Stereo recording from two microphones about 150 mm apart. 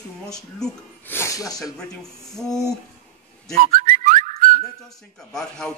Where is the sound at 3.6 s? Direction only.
65° right (ahead or behind).